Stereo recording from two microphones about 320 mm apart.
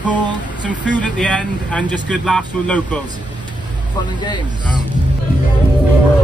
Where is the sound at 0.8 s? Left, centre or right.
Centre.